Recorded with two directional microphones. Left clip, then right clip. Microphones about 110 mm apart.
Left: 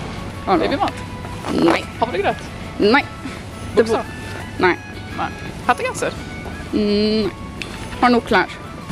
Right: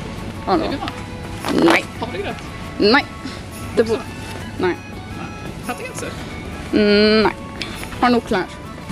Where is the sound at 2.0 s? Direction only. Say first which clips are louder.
Left 7 dB; 25° left (ahead or behind).